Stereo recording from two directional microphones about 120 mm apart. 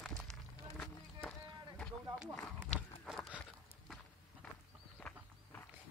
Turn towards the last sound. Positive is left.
turn(degrees=10)  # may be behind; listen again after turning